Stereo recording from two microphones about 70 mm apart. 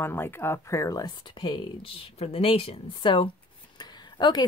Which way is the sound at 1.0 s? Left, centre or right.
Left.